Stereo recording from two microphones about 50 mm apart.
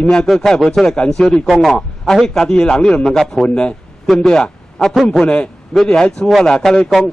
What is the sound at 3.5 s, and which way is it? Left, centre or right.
A man's voice, centre.